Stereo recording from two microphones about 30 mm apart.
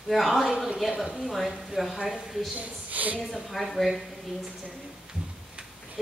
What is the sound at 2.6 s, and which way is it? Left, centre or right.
Speech, right.